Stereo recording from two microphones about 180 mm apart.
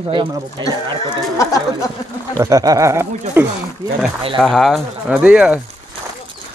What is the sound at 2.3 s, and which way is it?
Speech, 20° right (ahead or behind).